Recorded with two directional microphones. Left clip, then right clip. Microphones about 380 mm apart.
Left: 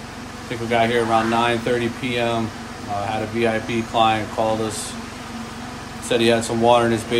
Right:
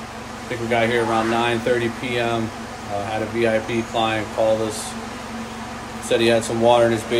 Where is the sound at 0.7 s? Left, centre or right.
Centre.